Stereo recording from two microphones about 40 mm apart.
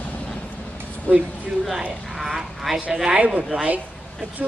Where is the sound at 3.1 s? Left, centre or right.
Right.